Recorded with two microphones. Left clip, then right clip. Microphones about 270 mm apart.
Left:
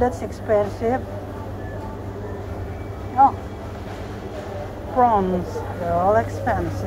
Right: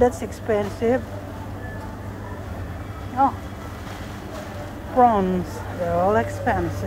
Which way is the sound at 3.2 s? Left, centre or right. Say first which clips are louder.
Left 5 dB; centre.